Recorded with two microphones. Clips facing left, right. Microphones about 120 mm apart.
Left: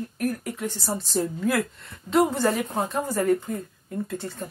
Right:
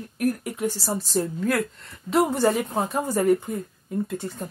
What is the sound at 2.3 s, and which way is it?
Speech, 15° right (ahead or behind).